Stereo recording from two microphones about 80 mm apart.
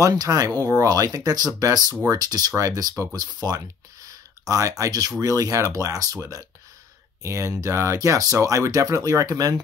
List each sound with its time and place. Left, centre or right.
0.1 s speech: right
7.2 s speech: right